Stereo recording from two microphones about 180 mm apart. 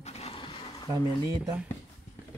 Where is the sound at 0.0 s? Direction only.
35° left (ahead or behind).